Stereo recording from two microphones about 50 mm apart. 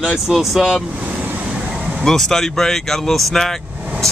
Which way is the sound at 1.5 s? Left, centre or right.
Centre.